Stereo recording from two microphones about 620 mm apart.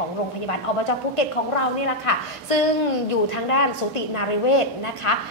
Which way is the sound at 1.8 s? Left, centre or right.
Left.